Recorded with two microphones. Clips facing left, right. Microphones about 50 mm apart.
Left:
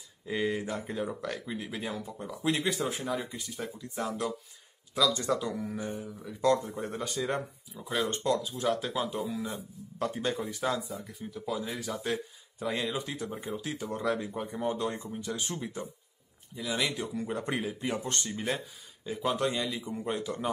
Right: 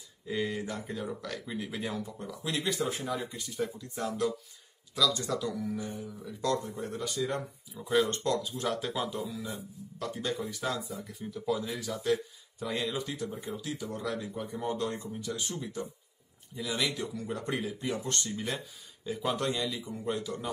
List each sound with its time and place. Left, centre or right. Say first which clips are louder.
0.3 s speech: left 2 dB; centre
1.4 s speech: even; centre
2.2 s speech: left 5 dB; centre
2.8 s speech: even; centre; by 7.4 s left
7.7 s speech: right 4 dB; centre
9.1 s speech: left 3 dB; left
10.5 s speech: left 3 dB; centre
12.0 s speech: right 3 dB; centre
13.1 s speech: left 1 dB; left
15.1 s speech: left 1 dB; left
16.5 s speech: left 1 dB; centre
17.0 s speech: left 2 dB; left
19.0 s speech: left 1 dB; centre
20.3 s speech: left 2 dB; left